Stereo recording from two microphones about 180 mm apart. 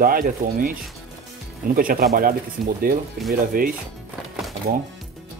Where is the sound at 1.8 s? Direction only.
50° right (ahead or behind).